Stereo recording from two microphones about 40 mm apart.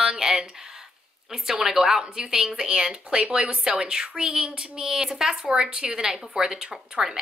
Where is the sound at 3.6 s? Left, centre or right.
Centre.